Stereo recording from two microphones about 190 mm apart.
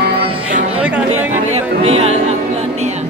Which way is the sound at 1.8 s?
35° right (ahead or behind).